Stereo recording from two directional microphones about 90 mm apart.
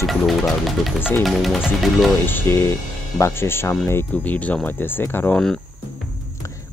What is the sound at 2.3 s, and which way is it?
Speech, 25° left (ahead or behind).